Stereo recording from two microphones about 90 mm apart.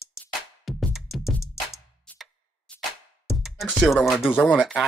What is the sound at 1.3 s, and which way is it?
Music, 30° left (ahead or behind).